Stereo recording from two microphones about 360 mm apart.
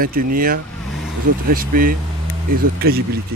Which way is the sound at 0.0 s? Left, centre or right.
Right.